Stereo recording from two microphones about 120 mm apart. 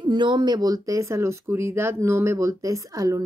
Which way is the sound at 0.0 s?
40° right (ahead or behind).